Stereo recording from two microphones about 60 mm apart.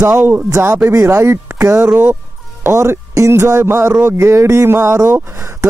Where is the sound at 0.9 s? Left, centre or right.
Right.